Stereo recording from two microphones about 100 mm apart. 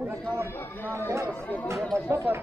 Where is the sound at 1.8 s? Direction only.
Centre (ahead or behind).